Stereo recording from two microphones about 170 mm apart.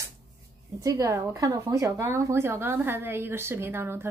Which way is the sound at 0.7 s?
20° right (ahead or behind).